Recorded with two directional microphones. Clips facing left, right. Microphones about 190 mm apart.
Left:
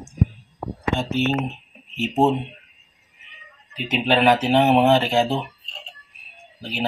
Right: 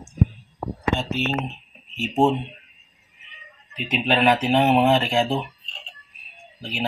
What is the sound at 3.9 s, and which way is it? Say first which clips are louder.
Speech: left 2 dB; 5° left (ahead or behind).